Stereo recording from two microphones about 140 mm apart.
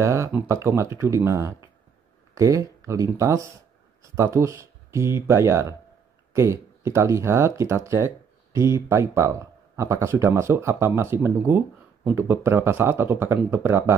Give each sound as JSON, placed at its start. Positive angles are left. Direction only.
{"t": 0.0, "sound": "speech", "side_deg": -20}